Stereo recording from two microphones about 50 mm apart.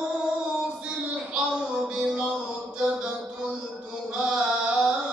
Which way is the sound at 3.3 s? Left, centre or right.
Centre.